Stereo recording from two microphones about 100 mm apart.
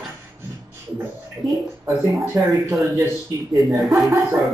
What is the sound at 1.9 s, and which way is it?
Speech, 30° right (ahead or behind).